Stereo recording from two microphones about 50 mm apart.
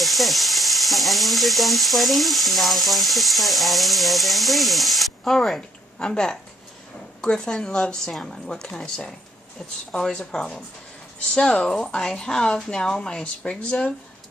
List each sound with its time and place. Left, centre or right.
0.0 s frying: centre
5.2 s speech: centre